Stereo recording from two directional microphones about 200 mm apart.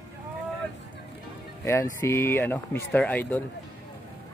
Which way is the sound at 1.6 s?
15° left (ahead or behind).